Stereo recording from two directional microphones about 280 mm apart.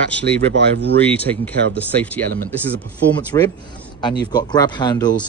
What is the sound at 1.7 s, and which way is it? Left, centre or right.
Speech, centre.